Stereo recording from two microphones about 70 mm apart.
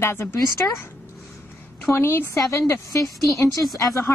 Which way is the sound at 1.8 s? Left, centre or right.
Left.